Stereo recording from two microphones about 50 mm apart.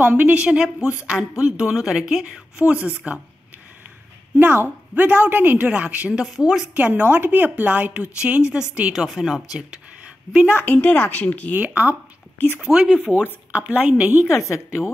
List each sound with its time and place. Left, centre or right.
0.0 s speech: right; by 2.4 s centre
2.6 s speech: right
4.4 s a woman's voice: right
5.7 s speech: right
6.2 s speech: centre
6.7 s a woman's voice: right; by 8.6 s centre
8.9 s speech: centre
10.0 s a sound: right
10.5 s speech: left
11.5 s a woman's voice: right
12.5 s speech: centre
13.1 s speech: right
14.2 s a woman's voice: left